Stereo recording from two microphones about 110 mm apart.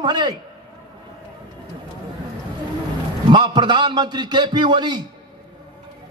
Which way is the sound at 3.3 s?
45° right (ahead or behind).